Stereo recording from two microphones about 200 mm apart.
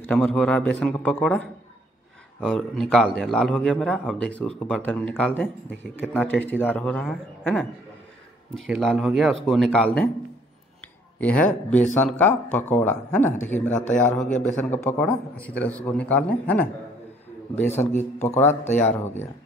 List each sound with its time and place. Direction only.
0.0 s a man's voice: 5° left (ahead or behind)
11.1 s speech: 5° left (ahead or behind)
17.6 s a man's voice: 35° left (ahead or behind)
18.4 s speech: 10° left (ahead or behind)